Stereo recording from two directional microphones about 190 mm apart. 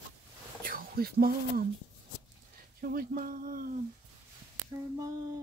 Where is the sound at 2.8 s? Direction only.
50° right (ahead or behind).